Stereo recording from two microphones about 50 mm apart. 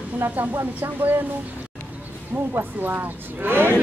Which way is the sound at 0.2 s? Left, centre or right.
Right.